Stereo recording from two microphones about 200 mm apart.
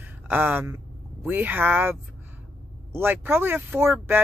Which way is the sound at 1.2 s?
10° right (ahead or behind).